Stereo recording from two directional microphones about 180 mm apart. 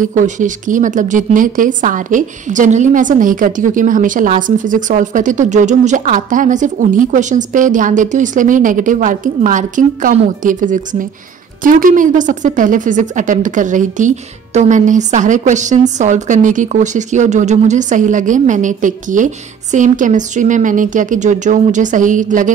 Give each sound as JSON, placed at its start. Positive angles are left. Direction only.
{"t": 0.0, "sound": "a woman's voice", "side_deg": -45}